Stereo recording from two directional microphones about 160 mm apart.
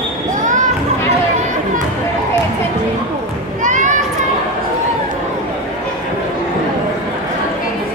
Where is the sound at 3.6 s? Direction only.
50° right (ahead or behind).